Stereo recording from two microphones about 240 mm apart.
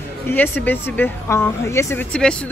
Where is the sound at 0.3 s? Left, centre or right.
Centre.